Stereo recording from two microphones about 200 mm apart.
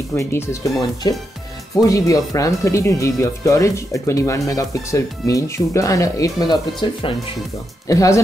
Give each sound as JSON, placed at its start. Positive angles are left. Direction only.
{"t": 0.1, "sound": "speech", "side_deg": 10}